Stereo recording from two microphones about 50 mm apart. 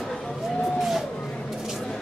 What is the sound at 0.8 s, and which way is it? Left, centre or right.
Vehicle, centre.